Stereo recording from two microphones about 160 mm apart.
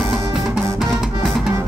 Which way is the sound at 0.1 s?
Centre (ahead or behind).